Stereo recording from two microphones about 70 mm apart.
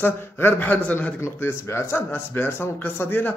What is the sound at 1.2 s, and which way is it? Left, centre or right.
Speech, left.